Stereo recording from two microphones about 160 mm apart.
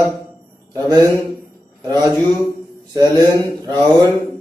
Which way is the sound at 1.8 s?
25° right (ahead or behind).